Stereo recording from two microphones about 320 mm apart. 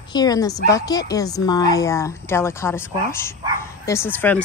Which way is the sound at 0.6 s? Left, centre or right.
Centre.